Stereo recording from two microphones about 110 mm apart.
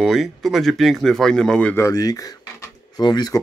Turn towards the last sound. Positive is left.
turn(degrees=40)  # may be behind; listen again after turning